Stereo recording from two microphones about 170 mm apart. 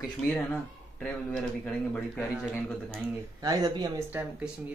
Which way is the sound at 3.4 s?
20° right (ahead or behind).